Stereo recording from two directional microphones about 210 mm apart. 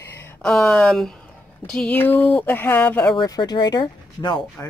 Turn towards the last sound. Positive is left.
turn(degrees=20)  # may be behind; listen again after turning